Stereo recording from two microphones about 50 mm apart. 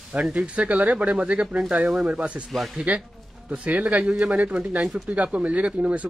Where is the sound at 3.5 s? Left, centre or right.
Right.